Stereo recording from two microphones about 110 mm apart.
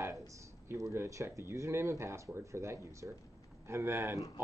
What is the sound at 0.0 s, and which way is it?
Speech, 25° right (ahead or behind).